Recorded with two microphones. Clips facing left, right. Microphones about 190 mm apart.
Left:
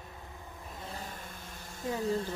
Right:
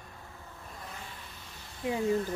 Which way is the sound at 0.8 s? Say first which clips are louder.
Left 4 dB; 35° left (ahead or behind).